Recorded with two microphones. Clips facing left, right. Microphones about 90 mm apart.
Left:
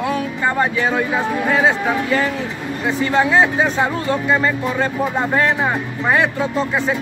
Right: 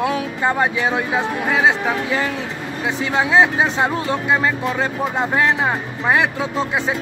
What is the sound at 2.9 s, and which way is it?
Speech, 15° right (ahead or behind).